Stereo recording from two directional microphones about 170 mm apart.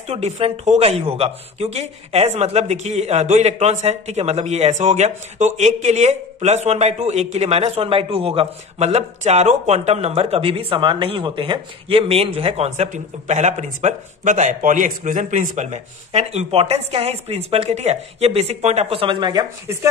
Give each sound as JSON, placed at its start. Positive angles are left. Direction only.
{"t": 0.1, "sound": "speech", "side_deg": -40}